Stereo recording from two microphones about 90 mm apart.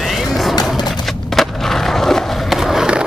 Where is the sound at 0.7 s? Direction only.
50° left (ahead or behind).